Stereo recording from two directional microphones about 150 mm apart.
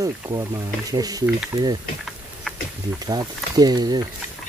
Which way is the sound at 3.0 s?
25° right (ahead or behind).